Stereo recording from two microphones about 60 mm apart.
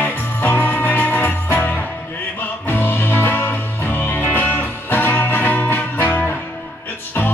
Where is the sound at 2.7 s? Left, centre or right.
Left.